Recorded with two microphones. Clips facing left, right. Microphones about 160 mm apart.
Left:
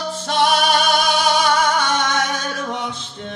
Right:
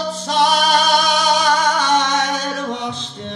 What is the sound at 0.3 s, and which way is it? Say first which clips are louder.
Music: right 1 dB; 35° right (ahead or behind).